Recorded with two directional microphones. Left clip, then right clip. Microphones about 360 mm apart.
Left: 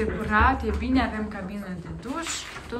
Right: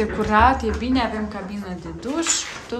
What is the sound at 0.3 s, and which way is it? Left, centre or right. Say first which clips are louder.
A woman's voice: right 5 dB; centre.